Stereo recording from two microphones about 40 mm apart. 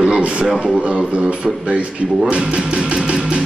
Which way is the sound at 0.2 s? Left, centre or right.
Right.